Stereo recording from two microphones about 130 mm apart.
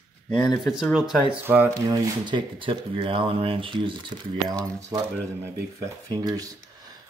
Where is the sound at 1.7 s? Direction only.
30° right (ahead or behind).